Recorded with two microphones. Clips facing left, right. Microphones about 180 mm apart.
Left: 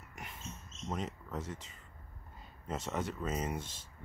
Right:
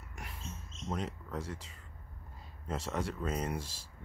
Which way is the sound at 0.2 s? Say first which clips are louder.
Right 1 dB; centre (ahead or behind).